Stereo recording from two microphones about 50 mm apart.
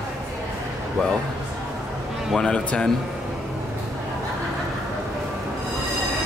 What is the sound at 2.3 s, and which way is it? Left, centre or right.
Speech, centre.